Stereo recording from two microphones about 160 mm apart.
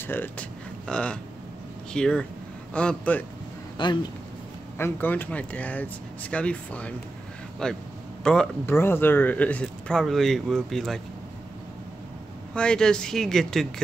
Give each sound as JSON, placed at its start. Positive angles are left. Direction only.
{"t": 0.0, "sound": "speech", "side_deg": 10}
{"t": 3.7, "sound": "speech", "side_deg": 30}
{"t": 4.7, "sound": "speech", "side_deg": 15}
{"t": 8.6, "sound": "speech", "side_deg": 15}
{"t": 12.5, "sound": "speech", "side_deg": 5}